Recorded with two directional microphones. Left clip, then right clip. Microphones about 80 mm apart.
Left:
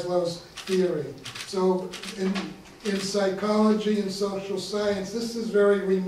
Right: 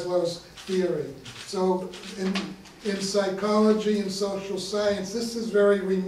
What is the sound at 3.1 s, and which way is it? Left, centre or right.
A man's voice, centre.